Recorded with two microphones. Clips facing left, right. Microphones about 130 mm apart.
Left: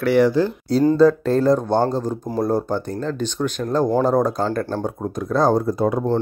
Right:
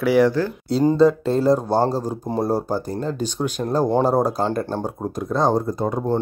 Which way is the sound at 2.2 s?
30° right (ahead or behind).